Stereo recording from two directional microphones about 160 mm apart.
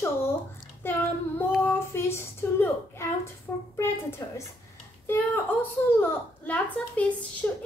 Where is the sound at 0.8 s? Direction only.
15° left (ahead or behind).